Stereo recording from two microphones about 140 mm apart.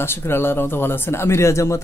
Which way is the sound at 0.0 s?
15° left (ahead or behind).